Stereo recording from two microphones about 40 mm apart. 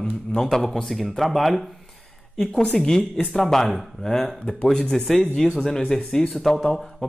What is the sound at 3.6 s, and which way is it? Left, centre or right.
Speech, centre.